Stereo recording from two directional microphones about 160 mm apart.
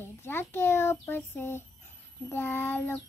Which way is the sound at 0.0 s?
15° left (ahead or behind).